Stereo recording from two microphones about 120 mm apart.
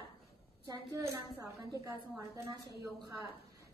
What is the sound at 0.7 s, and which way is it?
A woman's voice, 20° right (ahead or behind).